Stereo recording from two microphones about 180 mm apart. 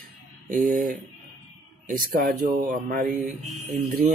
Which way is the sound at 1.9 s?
50° right (ahead or behind).